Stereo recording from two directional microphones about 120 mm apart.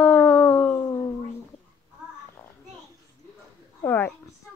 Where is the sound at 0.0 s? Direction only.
10° left (ahead or behind).